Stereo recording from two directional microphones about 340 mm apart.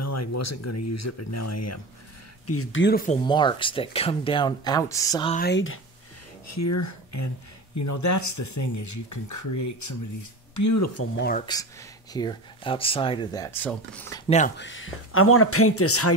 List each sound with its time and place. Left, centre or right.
0.0 s speech: left
3.3 s speech: centre
5.4 s speech: left
6.4 s speech: left
11.1 s speech: left
12.1 s speech: centre
14.6 s speech: left